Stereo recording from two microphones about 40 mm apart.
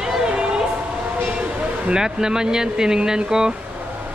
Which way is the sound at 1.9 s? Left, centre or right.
Centre.